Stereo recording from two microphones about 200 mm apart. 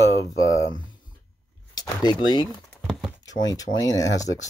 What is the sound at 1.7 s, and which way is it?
Speech, 20° left (ahead or behind).